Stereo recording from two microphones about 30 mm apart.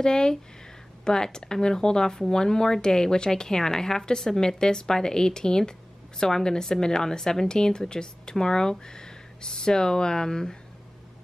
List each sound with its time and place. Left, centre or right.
0.0 s a woman's voice: left